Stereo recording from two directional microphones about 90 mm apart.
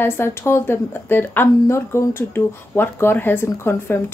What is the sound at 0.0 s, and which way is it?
Speech, 25° left (ahead or behind).